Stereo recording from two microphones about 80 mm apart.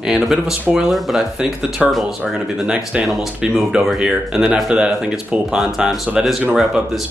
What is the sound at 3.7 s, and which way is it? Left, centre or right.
Speech, centre.